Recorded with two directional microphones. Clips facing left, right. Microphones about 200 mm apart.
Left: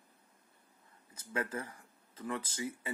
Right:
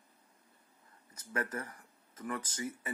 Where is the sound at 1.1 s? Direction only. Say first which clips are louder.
Even; 25° left (ahead or behind).